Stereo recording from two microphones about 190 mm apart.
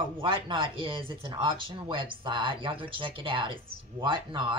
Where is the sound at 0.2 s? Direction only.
25° right (ahead or behind).